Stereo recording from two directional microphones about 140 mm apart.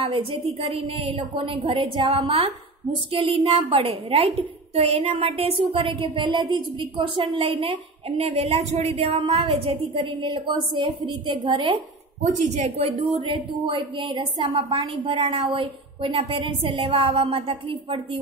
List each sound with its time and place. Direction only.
0.0 s a woman's voice: 40° right (ahead or behind)
12.2 s speech: 55° right (ahead or behind)